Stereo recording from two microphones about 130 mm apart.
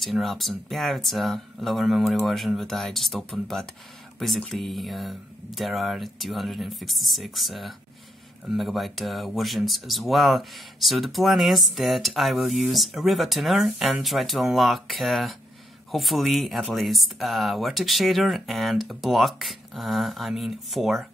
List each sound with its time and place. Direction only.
0.0 s speech: centre (ahead or behind)